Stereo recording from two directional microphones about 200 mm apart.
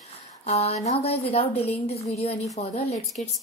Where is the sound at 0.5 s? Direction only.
30° left (ahead or behind).